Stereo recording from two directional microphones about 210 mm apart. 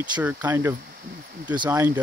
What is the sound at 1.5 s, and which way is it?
Speech, 20° right (ahead or behind).